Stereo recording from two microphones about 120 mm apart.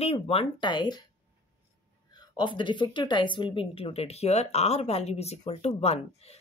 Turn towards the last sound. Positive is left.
turn(degrees=60)  # may be behind; listen again after turning